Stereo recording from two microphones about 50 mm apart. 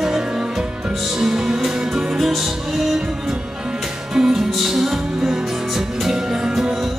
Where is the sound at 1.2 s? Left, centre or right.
Centre.